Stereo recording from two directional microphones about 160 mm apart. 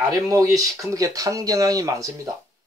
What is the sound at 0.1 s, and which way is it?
Speech, 20° right (ahead or behind).